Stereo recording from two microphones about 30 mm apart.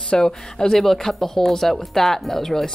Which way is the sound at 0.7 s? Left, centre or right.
Centre.